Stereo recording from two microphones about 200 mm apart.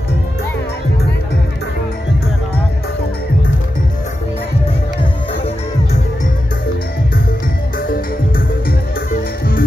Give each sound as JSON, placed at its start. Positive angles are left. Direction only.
{"t": 7.9, "sound": "music", "side_deg": 45}